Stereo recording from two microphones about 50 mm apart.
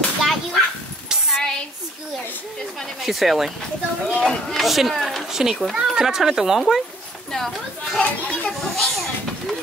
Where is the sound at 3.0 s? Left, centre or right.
Centre.